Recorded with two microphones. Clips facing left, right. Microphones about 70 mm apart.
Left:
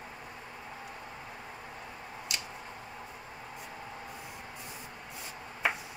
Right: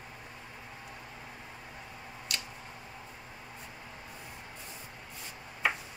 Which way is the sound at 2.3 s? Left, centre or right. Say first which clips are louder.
Even; centre.